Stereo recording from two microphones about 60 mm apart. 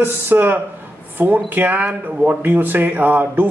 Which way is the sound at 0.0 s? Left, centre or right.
Right.